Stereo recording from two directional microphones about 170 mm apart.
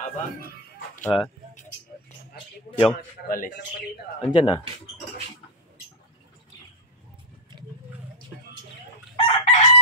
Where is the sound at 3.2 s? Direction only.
55° left (ahead or behind).